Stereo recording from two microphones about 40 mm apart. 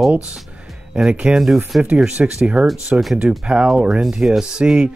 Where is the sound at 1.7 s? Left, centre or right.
Right.